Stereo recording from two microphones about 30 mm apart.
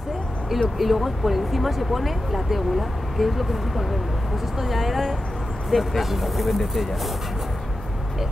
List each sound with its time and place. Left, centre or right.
0.7 s speech: centre